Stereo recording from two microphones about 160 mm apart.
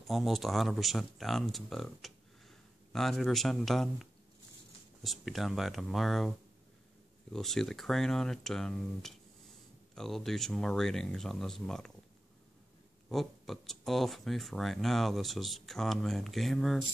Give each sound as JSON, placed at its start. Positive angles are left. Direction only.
{"t": 0.0, "sound": "speech", "side_deg": 0}
{"t": 7.3, "sound": "speech", "side_deg": 0}
{"t": 13.1, "sound": "speech", "side_deg": 0}